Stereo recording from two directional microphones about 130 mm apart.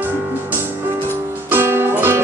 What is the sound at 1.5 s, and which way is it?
Music, 20° right (ahead or behind).